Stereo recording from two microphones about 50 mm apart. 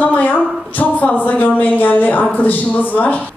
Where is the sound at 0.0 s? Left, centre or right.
Left.